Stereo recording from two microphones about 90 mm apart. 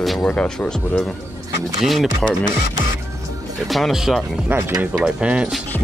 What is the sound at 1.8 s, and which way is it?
Speech, centre (ahead or behind).